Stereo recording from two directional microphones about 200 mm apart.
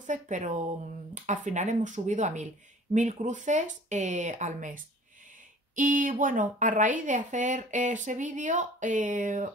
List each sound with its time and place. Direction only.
0.0 s speech: 40° right (ahead or behind)